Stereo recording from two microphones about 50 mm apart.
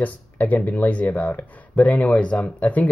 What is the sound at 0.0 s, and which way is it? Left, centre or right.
Speech, left.